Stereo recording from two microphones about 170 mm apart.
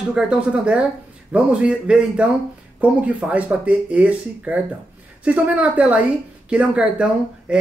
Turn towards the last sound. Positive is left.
turn(degrees=-5)  # may be behind; listen again after turning